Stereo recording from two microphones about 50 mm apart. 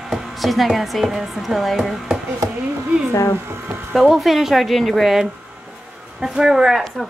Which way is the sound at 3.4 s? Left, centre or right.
Right.